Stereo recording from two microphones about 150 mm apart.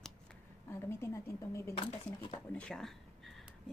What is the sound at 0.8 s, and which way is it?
Speech, 15° left (ahead or behind).